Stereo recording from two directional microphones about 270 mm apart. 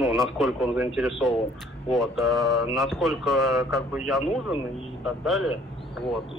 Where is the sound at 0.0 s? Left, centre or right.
Centre.